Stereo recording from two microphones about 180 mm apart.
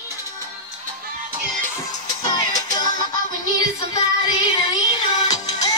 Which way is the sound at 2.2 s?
20° left (ahead or behind).